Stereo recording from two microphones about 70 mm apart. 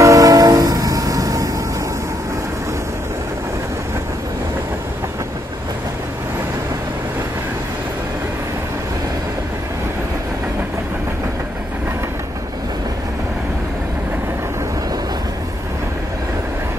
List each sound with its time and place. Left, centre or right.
0.0 s train: right